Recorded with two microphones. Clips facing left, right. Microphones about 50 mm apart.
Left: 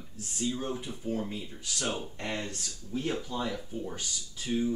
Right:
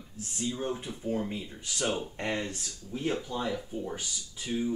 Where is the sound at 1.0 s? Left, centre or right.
Centre.